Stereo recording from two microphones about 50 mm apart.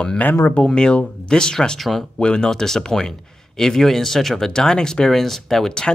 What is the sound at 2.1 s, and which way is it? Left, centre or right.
Speech, centre.